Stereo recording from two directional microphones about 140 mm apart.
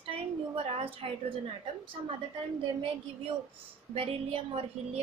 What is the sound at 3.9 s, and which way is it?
Speech, 45° right (ahead or behind).